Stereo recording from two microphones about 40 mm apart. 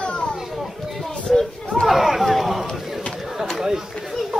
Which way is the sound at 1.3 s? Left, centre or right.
Centre.